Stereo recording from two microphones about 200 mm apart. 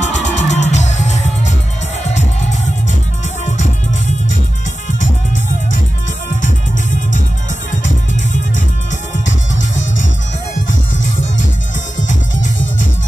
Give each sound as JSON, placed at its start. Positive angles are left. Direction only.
{"t": 0.0, "sound": "music", "side_deg": 35}
{"t": 7.8, "sound": "music", "side_deg": 40}
{"t": 12.1, "sound": "music", "side_deg": 65}